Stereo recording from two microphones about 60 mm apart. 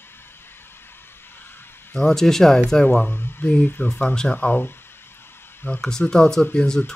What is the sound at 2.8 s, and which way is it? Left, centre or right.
Speech, centre.